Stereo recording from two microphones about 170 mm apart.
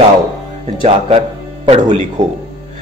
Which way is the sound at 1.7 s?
45° right (ahead or behind).